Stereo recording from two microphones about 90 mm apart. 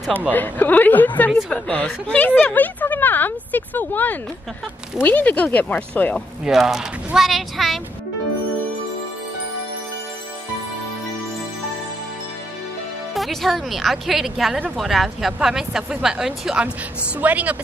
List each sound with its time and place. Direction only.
0.3 s speech: 20° left (ahead or behind)
6.4 s speech: 5° right (ahead or behind)
13.1 s a woman's voice: centre (ahead or behind); by 17.6 s 15° right (ahead or behind)